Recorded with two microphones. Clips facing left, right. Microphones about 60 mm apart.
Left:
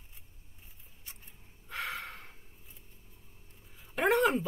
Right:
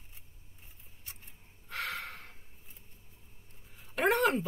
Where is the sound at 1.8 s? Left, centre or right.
Centre.